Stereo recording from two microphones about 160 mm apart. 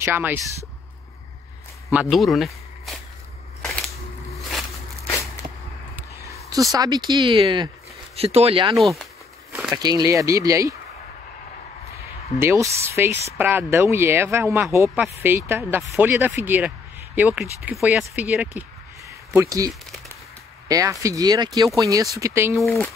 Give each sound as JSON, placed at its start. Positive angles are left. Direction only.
{"t": 0.0, "sound": "speech", "side_deg": -15}
{"t": 1.9, "sound": "speech", "side_deg": -5}
{"t": 3.6, "sound": "scissors", "side_deg": 5}
{"t": 6.7, "sound": "speech", "side_deg": -25}
{"t": 8.7, "sound": "speech", "side_deg": 0}
{"t": 9.5, "sound": "a sound", "side_deg": -5}
{"t": 9.8, "sound": "speech", "side_deg": -25}
{"t": 12.4, "sound": "speech", "side_deg": -15}